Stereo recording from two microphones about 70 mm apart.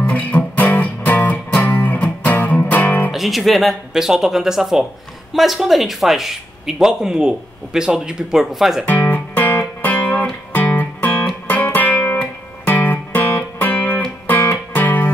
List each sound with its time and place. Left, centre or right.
0.0 s music: centre
3.1 s speech: centre
8.8 s music: left